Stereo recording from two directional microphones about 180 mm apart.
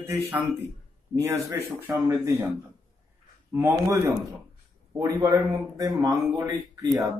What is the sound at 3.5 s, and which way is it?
Speech, 15° right (ahead or behind).